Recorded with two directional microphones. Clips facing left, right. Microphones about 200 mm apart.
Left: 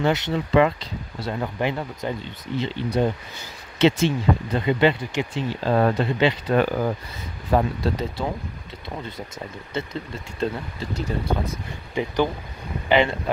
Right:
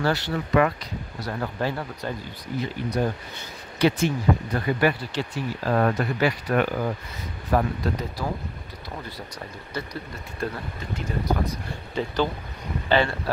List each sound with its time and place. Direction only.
0.0 s speech: 20° left (ahead or behind)
9.8 s speech: 25° left (ahead or behind)
11.9 s speech: 15° left (ahead or behind)